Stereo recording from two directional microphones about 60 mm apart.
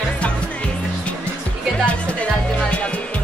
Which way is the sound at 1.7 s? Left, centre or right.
Left.